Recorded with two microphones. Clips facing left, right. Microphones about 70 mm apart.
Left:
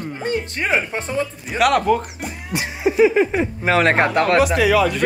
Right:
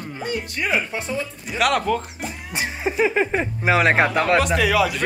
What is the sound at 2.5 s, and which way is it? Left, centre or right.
Music, right.